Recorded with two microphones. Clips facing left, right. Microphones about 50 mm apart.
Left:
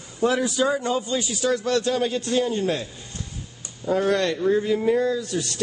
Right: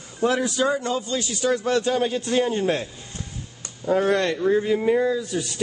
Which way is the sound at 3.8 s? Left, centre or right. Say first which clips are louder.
Right 1 dB; right.